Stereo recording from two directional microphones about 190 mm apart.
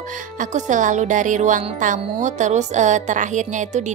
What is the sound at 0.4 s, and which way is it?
Speech, 40° right (ahead or behind).